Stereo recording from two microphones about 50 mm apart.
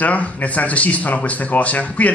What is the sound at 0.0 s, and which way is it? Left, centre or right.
A man's voice, left.